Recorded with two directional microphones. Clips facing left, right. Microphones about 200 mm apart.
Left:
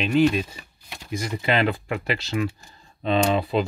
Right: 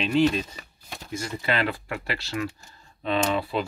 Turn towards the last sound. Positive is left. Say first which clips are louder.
# left 4 dB
turn(degrees=20)  # may be behind; listen again after turning